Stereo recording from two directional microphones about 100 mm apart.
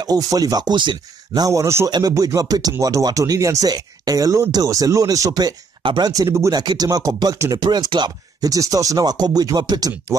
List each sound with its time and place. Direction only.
0.0 s speech: 40° right (ahead or behind)
1.9 s speech: 40° right (ahead or behind)
5.8 s a sound: 60° right (ahead or behind)
6.0 s speech: 35° right (ahead or behind)
6.5 s speech: 45° right (ahead or behind)